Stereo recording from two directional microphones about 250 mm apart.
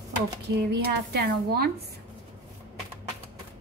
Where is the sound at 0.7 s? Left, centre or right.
Right.